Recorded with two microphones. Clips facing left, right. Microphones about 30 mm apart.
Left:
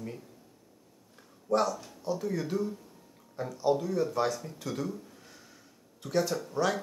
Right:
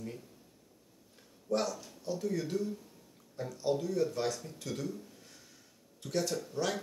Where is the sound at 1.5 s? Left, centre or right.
Centre.